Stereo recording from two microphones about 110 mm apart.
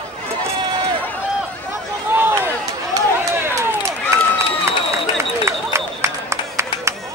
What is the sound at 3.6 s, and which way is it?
Run, 25° right (ahead or behind).